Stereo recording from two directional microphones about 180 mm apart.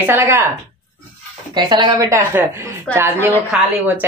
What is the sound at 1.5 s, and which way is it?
A woman's voice, 25° right (ahead or behind).